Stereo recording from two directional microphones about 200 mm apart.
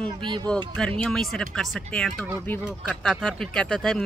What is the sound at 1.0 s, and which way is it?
Speech, centre (ahead or behind).